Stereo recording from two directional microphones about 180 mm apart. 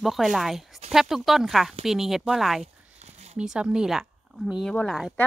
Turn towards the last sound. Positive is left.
turn(degrees=0)  # may be behind; listen again after turning